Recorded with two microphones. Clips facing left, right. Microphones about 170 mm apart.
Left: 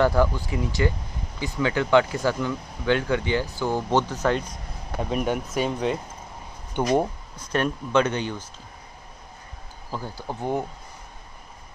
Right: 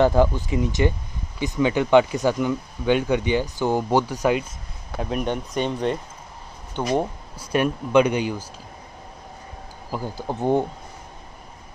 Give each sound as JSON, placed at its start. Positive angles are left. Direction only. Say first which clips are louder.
{"t": 0.0, "sound": "speech", "louder": "right 3 dB", "side_deg": -20}
{"t": 5.1, "sound": "speech", "louder": "even", "side_deg": 5}
{"t": 7.5, "sound": "speech", "louder": "right 4 dB", "side_deg": -10}
{"t": 9.9, "sound": "speech", "louder": "right 4 dB", "side_deg": -15}
{"t": 10.2, "sound": "speech", "louder": "right 6 dB", "side_deg": -25}